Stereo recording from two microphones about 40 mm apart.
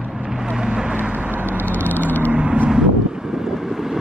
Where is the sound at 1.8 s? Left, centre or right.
Left.